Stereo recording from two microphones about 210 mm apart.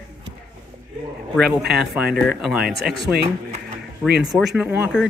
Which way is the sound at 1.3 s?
5° right (ahead or behind).